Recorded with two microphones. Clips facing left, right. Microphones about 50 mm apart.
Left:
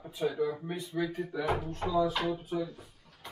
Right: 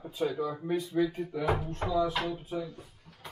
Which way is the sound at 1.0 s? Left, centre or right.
Left.